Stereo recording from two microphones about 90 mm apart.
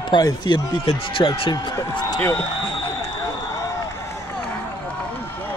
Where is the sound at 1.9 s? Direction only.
50° left (ahead or behind).